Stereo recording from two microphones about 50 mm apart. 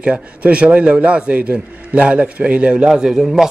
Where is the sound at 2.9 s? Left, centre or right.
Centre.